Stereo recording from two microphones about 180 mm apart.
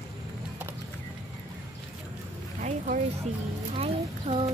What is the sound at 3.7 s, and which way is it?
Speech, 35° right (ahead or behind).